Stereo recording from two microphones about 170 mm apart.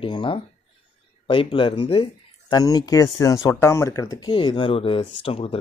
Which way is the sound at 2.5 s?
20° left (ahead or behind).